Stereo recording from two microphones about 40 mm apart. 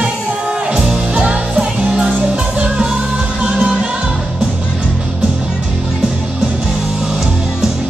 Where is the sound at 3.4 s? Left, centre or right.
Right.